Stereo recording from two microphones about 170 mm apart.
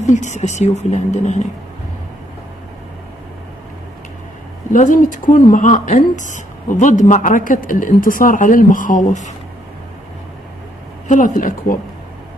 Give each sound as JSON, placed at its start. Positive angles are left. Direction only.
{"t": 0.0, "sound": "speech", "side_deg": 45}
{"t": 4.7, "sound": "speech", "side_deg": 50}
{"t": 11.1, "sound": "speech", "side_deg": 50}